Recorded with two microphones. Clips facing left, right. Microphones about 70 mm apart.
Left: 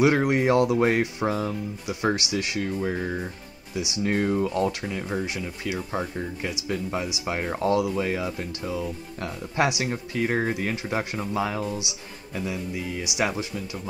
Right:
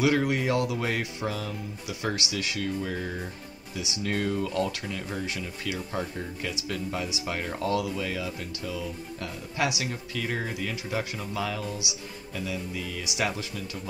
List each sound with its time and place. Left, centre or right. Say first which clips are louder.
0.0 s speech: left 4 dB; left